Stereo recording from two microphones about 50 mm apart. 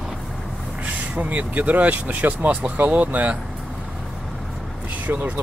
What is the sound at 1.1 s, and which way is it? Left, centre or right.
Speech, right.